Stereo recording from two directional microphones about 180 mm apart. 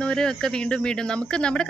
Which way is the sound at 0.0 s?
5° left (ahead or behind).